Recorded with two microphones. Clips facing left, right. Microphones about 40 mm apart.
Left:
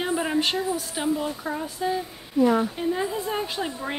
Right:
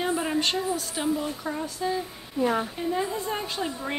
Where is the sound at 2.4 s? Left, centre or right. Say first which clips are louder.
Left 5 dB; centre.